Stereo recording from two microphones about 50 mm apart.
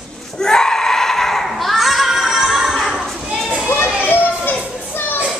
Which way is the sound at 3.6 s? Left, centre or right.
Left.